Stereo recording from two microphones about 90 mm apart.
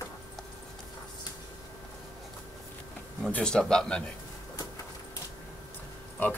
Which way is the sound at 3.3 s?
10° left (ahead or behind).